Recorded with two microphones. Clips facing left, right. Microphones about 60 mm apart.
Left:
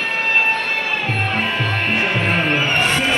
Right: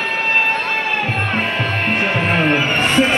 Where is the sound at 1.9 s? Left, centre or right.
Right.